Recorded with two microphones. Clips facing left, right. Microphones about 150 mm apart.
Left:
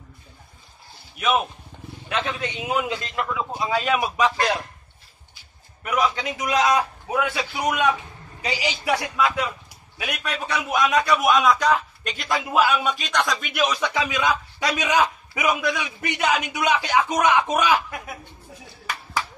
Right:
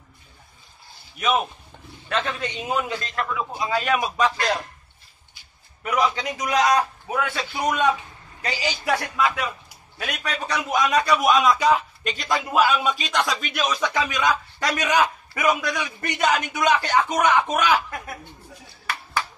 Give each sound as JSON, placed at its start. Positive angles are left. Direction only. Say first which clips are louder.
{"t": 2.0, "sound": "a man's voice", "louder": "right 1 dB", "side_deg": 5}
{"t": 5.9, "sound": "a man's voice", "louder": "even", "side_deg": 0}
{"t": 7.1, "sound": "a man's voice", "louder": "left 2 dB", "side_deg": 15}